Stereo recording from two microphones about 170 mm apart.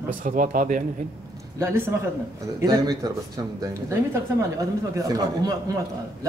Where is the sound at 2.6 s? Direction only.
20° right (ahead or behind).